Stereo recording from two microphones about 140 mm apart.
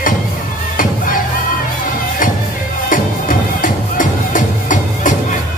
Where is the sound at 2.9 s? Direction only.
75° left (ahead or behind).